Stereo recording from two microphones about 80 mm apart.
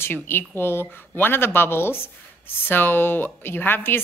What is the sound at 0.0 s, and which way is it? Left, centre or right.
A woman's voice, left.